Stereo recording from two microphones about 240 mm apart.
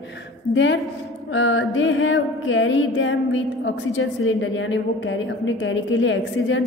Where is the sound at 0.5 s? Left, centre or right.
Left.